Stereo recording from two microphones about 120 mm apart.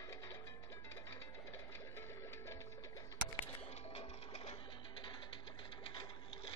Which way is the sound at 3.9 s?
65° left (ahead or behind).